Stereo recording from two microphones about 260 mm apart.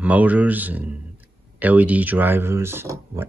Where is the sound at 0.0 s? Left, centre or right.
Centre.